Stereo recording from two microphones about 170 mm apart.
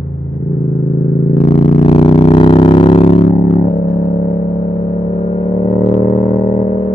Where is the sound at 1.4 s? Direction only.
40° left (ahead or behind).